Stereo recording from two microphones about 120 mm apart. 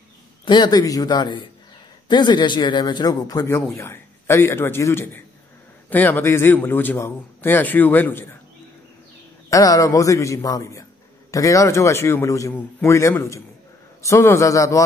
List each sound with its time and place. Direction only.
0.5 s a man's voice: 35° left (ahead or behind); by 8.3 s 15° left (ahead or behind)
9.5 s a man's voice: 30° left (ahead or behind)